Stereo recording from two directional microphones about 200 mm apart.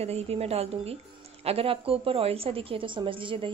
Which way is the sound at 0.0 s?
30° right (ahead or behind).